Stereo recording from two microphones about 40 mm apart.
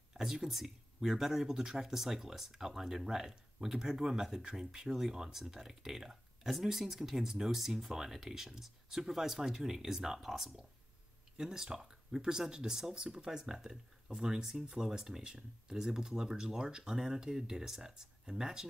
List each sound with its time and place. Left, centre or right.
0.1 s speech: centre